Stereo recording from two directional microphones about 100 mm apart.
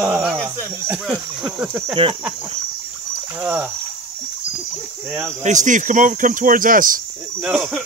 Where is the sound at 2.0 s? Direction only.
60° right (ahead or behind).